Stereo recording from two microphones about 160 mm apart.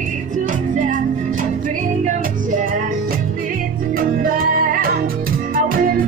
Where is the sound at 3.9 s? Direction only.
60° right (ahead or behind).